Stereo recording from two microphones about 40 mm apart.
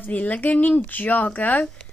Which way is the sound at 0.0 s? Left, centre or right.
Left.